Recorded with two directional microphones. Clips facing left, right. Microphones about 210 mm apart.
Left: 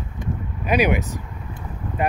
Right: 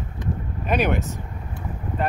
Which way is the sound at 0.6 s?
10° left (ahead or behind).